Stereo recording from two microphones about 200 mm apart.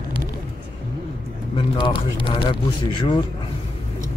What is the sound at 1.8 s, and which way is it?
Speech, 25° left (ahead or behind).